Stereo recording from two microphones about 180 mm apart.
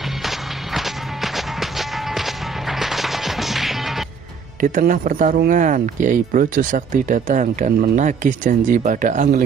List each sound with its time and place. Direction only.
0.7 s music: centre (ahead or behind)
4.6 s speech: 45° right (ahead or behind)